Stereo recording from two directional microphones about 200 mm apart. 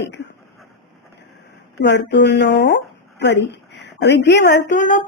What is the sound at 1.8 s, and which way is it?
Speech, 60° left (ahead or behind).